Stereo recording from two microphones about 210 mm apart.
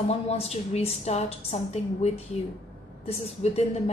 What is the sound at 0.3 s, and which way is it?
Speech, 30° left (ahead or behind).